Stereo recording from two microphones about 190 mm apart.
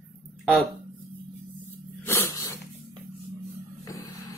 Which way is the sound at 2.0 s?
10° left (ahead or behind).